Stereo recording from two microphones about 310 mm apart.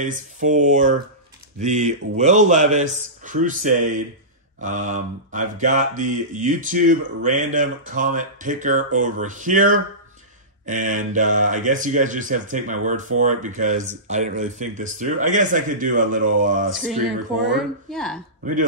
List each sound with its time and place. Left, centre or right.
0.0 s speech: right
17.5 s a woman's voice: centre
18.4 s speech: right